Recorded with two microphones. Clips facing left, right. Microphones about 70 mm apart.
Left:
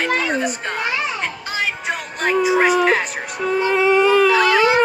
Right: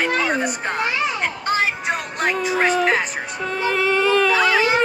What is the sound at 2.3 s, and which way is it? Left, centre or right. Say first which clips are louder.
Music: left 5 dB; centre.